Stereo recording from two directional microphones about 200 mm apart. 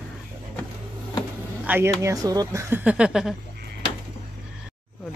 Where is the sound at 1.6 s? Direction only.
10° right (ahead or behind).